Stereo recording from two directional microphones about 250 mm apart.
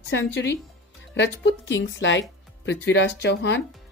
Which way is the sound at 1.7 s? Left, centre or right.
Left.